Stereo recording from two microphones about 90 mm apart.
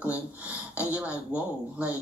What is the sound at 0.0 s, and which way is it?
Speech, 15° right (ahead or behind).